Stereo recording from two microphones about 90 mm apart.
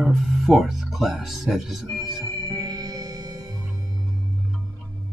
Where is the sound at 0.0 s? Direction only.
Centre (ahead or behind).